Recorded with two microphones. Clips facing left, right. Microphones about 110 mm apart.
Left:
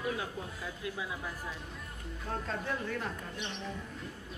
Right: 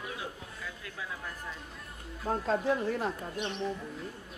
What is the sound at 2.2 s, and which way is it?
Speech, 35° right (ahead or behind).